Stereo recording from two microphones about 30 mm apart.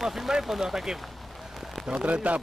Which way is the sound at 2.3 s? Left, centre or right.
Right.